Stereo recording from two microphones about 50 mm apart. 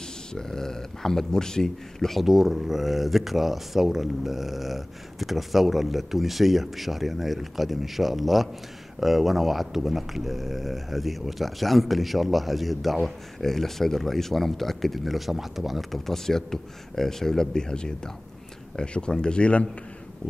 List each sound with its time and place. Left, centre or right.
0.3 s speech: centre
2.2 s a man's voice: centre; by 19.7 s left